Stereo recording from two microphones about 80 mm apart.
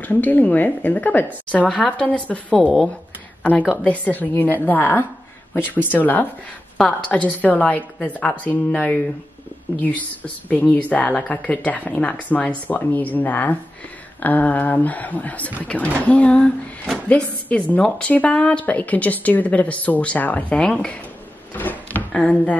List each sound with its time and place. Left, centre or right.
0.0 s a woman's voice: left
3.7 s a woman's voice: centre
21.5 s speech: left